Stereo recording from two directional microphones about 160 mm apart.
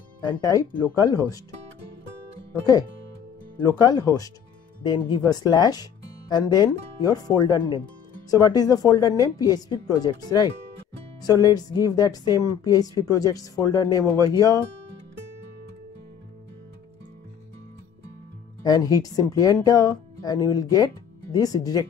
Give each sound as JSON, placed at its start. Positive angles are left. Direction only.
{"t": 0.2, "sound": "speech", "side_deg": 20}
{"t": 3.5, "sound": "speech", "side_deg": 25}
{"t": 18.6, "sound": "speech", "side_deg": 20}